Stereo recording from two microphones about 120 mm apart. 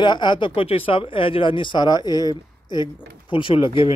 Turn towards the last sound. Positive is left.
turn(degrees=45)  # may be behind; listen again after turning